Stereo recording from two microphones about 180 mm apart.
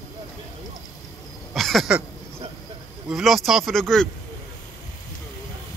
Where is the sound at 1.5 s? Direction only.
Centre (ahead or behind).